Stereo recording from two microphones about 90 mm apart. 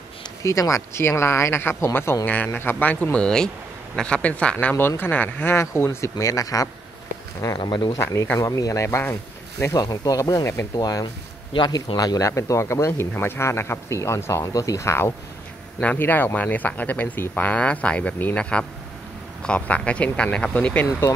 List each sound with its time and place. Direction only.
0.4 s speech: 35° left (ahead or behind)
7.4 s speech: 50° left (ahead or behind)
7.9 s speech: 35° left (ahead or behind)
9.8 s speech: 45° left (ahead or behind); by 10.7 s 30° left (ahead or behind)
10.8 s speech: 45° left (ahead or behind)
11.5 s speech: 55° left (ahead or behind); by 15.1 s 30° left (ahead or behind)
15.8 s speech: 20° left (ahead or behind)